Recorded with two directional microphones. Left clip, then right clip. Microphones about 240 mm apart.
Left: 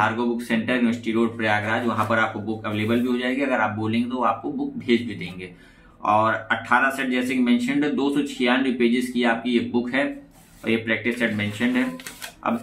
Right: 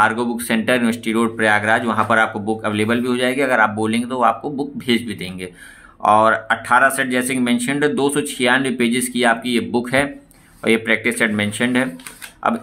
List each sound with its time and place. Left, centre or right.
0.0 s speech: right